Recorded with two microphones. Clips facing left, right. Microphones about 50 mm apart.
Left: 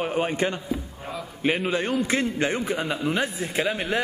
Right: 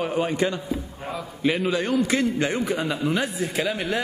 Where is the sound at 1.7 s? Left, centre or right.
Left.